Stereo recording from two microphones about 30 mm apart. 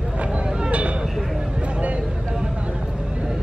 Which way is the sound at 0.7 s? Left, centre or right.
Right.